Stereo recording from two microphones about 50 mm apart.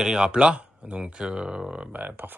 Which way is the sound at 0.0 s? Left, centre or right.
Centre.